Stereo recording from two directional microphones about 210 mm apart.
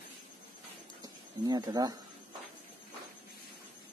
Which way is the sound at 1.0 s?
20° right (ahead or behind).